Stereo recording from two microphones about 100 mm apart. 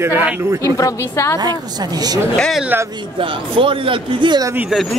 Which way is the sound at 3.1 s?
60° right (ahead or behind).